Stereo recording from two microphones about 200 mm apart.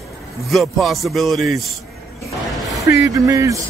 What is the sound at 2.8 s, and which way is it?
Speech, 15° right (ahead or behind).